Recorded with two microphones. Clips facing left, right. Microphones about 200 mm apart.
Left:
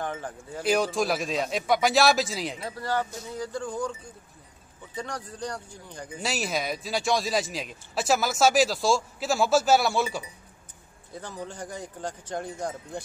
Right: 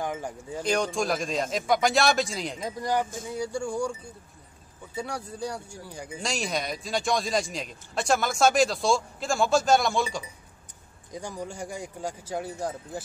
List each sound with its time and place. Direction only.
0.0 s speech: 10° right (ahead or behind)
0.6 s speech: 5° left (ahead or behind)
2.6 s speech: 15° right (ahead or behind)
4.9 s speech: 10° right (ahead or behind)
6.2 s speech: 5° left (ahead or behind)
11.1 s speech: 10° right (ahead or behind)